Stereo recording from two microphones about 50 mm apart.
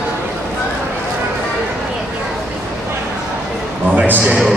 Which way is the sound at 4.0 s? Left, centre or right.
Right.